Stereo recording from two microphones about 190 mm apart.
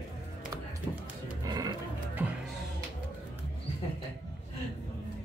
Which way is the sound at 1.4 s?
20° right (ahead or behind).